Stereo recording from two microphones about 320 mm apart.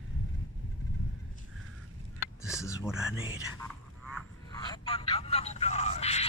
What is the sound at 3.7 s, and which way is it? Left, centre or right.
Vehicle, centre.